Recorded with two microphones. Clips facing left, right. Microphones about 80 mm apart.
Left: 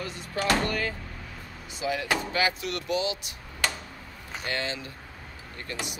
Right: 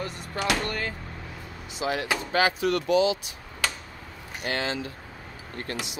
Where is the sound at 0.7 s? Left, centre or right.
Right.